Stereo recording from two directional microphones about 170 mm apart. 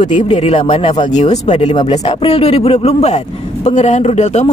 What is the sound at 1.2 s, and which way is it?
Speech, 40° left (ahead or behind).